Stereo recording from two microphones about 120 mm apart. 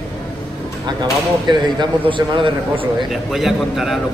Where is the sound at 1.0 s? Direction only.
35° right (ahead or behind).